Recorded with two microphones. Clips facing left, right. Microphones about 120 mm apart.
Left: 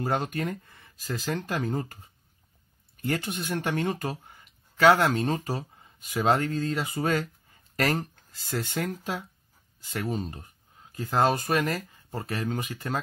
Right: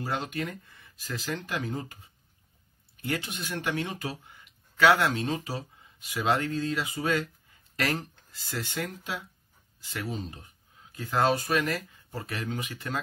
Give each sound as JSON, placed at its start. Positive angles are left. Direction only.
{"t": 0.0, "sound": "speech", "side_deg": 50}